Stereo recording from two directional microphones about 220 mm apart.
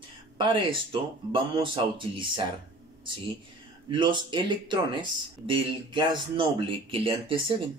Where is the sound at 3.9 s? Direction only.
20° right (ahead or behind).